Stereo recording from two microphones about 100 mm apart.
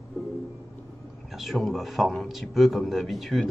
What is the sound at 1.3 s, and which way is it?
A man's voice, centre (ahead or behind).